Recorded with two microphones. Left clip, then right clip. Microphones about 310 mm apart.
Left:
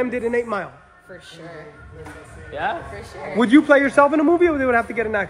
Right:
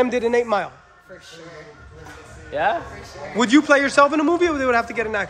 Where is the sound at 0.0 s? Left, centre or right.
Centre.